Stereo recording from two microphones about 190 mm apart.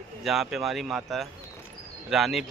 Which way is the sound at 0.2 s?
Centre (ahead or behind).